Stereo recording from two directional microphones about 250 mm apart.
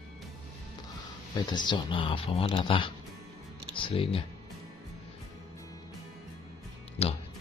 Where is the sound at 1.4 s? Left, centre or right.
Centre.